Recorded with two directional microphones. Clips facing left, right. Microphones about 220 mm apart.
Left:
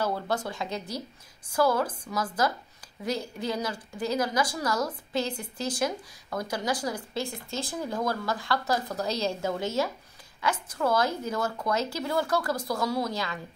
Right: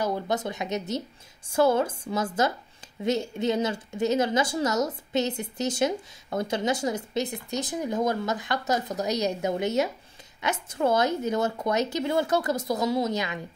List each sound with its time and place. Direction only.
0.0 s a woman's voice: 20° right (ahead or behind)